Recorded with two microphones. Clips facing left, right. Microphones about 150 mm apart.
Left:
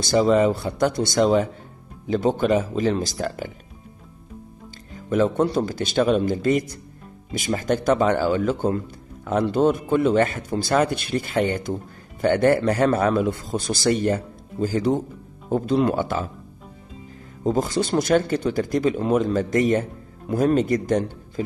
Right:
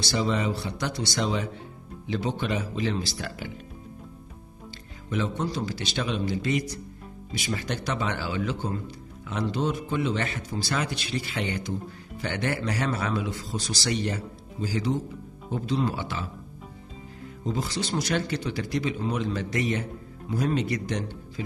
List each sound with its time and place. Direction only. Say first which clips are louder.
0.0 s speech: left 9 dB; 45° left (ahead or behind)
4.9 s speech: left 10 dB; 50° left (ahead or behind)
17.4 s speech: left 9 dB; 50° left (ahead or behind)